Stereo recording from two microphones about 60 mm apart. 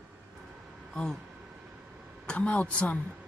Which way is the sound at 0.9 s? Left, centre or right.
Centre.